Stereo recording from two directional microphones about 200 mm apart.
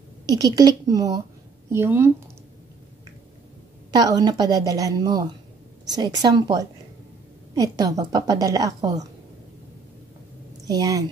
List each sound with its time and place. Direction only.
0.3 s a woman's voice: 20° right (ahead or behind)
3.9 s a woman's voice: 20° right (ahead or behind)
10.7 s a woman's voice: 20° right (ahead or behind)